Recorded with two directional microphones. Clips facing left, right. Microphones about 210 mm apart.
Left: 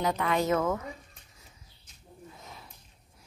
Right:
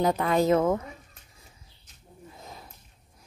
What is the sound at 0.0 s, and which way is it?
Speech, 35° right (ahead or behind).